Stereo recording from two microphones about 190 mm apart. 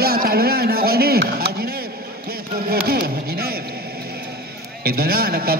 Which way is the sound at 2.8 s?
55° right (ahead or behind).